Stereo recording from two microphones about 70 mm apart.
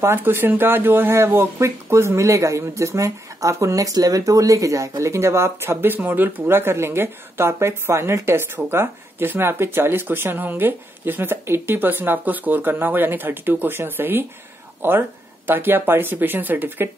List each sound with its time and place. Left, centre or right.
0.0 s speech: right